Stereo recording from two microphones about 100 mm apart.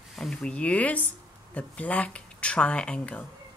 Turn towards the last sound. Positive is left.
turn(degrees=10)  # may be behind; listen again after turning